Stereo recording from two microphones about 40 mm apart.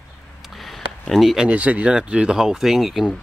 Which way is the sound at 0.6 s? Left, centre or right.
Centre.